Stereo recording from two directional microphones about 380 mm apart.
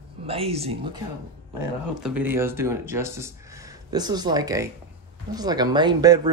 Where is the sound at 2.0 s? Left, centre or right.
Centre.